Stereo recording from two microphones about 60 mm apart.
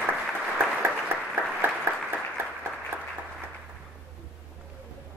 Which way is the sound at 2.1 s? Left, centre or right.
Right.